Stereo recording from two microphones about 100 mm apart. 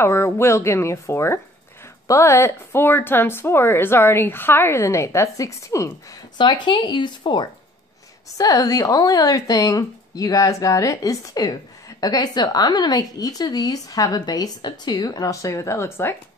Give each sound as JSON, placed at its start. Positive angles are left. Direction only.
{"t": 0.0, "sound": "a woman's voice", "side_deg": 25}
{"t": 6.3, "sound": "speech", "side_deg": 50}
{"t": 8.4, "sound": "a woman's voice", "side_deg": 35}